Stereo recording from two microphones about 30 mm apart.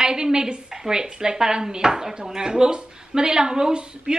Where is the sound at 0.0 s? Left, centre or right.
Right.